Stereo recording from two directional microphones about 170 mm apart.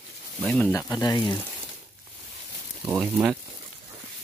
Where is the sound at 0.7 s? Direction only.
20° left (ahead or behind).